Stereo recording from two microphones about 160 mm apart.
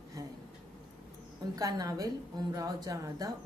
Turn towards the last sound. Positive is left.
turn(degrees=-20)  # may be behind; listen again after turning